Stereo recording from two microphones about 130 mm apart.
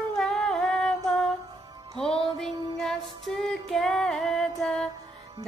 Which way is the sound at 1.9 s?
5° left (ahead or behind).